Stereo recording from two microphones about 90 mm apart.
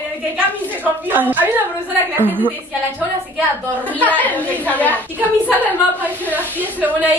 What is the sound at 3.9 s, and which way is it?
A woman's voice, 15° left (ahead or behind).